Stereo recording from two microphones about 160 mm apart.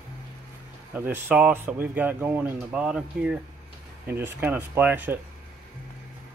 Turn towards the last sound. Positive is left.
turn(degrees=-10)  # may be behind; listen again after turning